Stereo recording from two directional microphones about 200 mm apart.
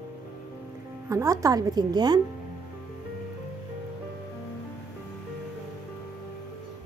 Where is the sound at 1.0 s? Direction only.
15° right (ahead or behind).